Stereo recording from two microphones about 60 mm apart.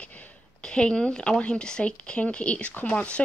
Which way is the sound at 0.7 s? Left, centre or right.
Centre.